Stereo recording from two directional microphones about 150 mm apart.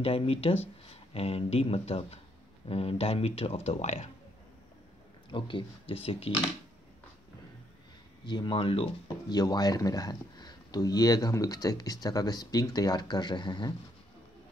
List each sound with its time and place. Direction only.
0.0 s speech: 40° left (ahead or behind)
5.3 s speech: 35° left (ahead or behind)
8.3 s speech: 35° left (ahead or behind)